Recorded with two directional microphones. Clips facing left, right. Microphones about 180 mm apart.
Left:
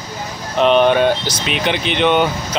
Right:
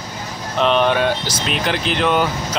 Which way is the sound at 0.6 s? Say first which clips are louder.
Left 4 dB; 5° left (ahead or behind).